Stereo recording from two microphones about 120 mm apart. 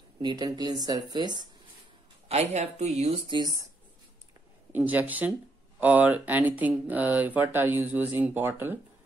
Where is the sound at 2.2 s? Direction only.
65° right (ahead or behind).